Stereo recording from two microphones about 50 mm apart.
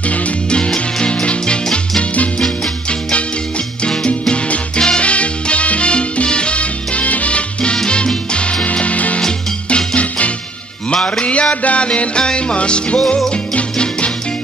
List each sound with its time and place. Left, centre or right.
0.0 s music: left; by 3.0 s centre
3.1 s music: left